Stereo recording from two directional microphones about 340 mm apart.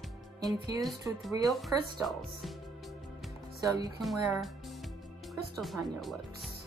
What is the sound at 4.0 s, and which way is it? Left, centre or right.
Speech, centre.